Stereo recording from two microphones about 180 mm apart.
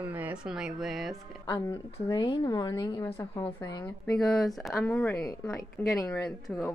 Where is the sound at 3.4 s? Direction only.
20° left (ahead or behind).